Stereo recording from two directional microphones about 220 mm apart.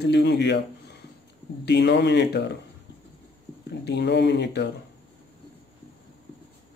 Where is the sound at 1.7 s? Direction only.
50° left (ahead or behind).